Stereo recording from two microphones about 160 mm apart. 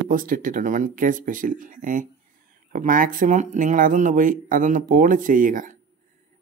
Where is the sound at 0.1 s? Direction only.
60° right (ahead or behind).